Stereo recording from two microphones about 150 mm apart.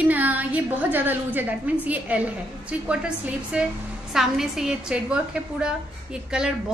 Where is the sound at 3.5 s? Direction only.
5° right (ahead or behind).